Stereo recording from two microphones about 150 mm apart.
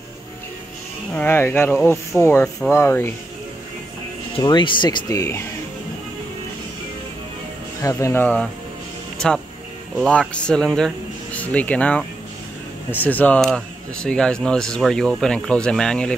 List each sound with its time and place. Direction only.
1.1 s speech: 15° left (ahead or behind)
2.1 s speech: 10° right (ahead or behind)
2.7 s speech: 15° left (ahead or behind)
4.4 s speech: 30° left (ahead or behind)
7.8 s speech: 20° left (ahead or behind); by 16.2 s 5° left (ahead or behind)